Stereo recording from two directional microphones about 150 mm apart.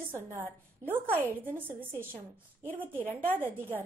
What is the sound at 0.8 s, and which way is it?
A woman's voice, 15° right (ahead or behind).